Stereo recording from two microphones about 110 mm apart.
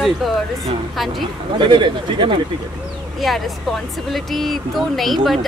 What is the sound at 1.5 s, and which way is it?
Speech, 45° right (ahead or behind).